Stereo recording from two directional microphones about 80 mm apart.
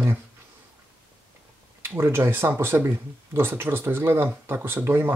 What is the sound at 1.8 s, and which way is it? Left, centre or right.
Speech, right.